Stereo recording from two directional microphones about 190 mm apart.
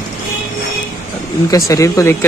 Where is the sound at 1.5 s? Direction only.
15° left (ahead or behind).